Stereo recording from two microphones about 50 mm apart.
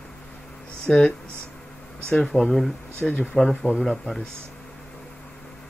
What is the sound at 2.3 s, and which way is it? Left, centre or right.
Speech, centre.